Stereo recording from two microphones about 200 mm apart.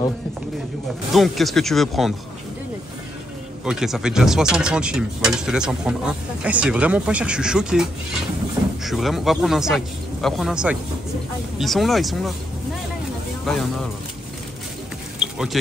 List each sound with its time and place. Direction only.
1.1 s speech: centre (ahead or behind)
3.6 s speech: centre (ahead or behind)
15.1 s a sound: centre (ahead or behind)